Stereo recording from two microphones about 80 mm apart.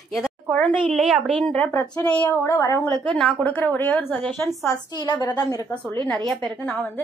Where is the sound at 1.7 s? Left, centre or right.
Left.